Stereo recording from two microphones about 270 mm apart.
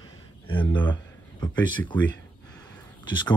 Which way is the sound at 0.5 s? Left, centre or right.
Centre.